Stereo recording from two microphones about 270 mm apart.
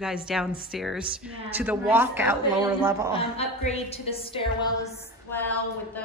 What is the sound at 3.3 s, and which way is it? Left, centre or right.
A woman's voice, left.